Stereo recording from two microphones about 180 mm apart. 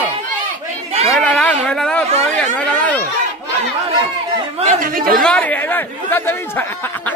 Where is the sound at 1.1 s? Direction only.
5° left (ahead or behind).